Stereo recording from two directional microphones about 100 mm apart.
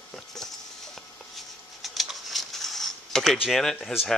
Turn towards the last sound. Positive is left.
turn(degrees=5)  # may be behind; listen again after turning